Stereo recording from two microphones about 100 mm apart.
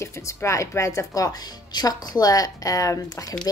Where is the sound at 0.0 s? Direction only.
30° left (ahead or behind).